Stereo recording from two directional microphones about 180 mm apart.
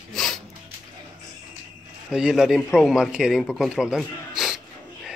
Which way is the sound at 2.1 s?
5° right (ahead or behind).